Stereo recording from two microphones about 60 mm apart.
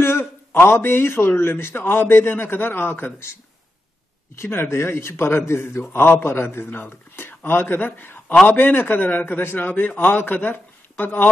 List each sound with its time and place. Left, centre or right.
0.2 s a man's voice: left
4.4 s a man's voice: left